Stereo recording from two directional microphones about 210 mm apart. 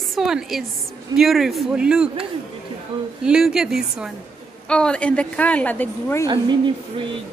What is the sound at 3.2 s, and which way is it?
Speech, centre (ahead or behind).